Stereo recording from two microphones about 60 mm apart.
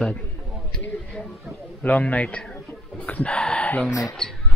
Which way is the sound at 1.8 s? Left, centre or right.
Left.